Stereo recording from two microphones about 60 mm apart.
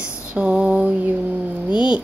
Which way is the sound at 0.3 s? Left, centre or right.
Right.